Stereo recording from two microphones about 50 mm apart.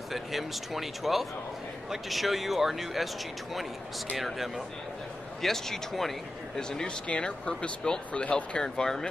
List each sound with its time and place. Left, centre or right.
0.1 s speech: centre
4.2 s speech: centre; by 8.6 s left
8.6 s speech: centre